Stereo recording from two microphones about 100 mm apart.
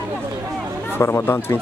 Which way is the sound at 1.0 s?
25° left (ahead or behind).